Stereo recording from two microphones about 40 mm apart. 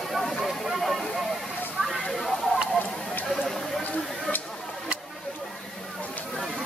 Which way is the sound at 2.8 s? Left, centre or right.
Left.